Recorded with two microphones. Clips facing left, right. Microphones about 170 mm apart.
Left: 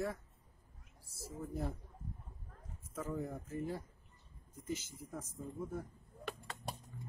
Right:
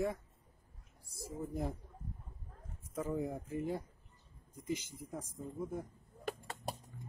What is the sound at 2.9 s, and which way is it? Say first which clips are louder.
Speech: right 4 dB; 10° right (ahead or behind).